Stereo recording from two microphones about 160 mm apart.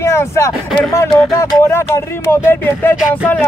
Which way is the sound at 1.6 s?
15° left (ahead or behind).